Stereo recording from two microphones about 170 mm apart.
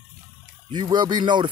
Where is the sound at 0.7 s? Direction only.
25° right (ahead or behind).